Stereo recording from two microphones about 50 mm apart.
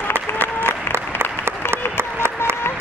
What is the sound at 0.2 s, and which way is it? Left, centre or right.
Applause, right.